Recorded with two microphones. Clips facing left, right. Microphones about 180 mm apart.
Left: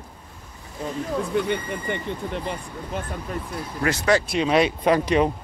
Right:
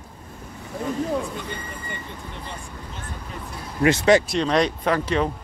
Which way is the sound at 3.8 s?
20° right (ahead or behind).